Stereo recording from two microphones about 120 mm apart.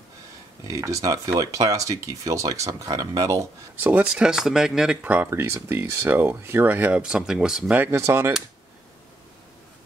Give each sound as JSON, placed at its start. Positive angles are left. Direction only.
{"t": 0.7, "sound": "speech", "side_deg": -25}
{"t": 3.8, "sound": "speech", "side_deg": -10}
{"t": 7.9, "sound": "speech", "side_deg": -25}